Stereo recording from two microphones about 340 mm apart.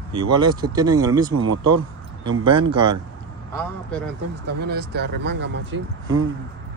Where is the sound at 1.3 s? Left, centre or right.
Right.